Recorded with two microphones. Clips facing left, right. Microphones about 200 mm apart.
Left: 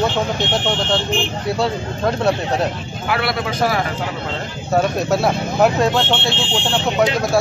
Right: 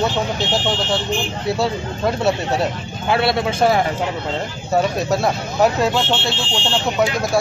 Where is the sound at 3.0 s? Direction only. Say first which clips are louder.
Right 3 dB; 25° right (ahead or behind).